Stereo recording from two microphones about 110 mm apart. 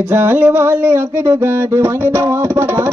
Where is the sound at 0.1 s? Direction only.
20° right (ahead or behind).